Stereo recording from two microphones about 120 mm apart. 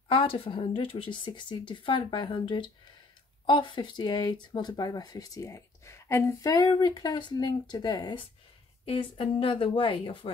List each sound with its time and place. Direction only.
0.1 s speech: 45° left (ahead or behind)